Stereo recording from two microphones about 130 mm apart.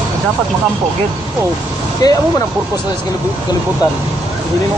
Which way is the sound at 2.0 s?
30° left (ahead or behind).